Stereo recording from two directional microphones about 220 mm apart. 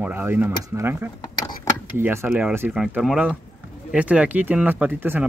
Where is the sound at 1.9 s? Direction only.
10° right (ahead or behind).